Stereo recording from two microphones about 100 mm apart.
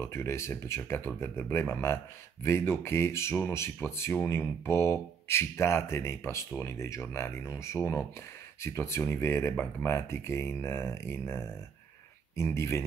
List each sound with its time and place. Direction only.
0.0 s speech: 25° left (ahead or behind)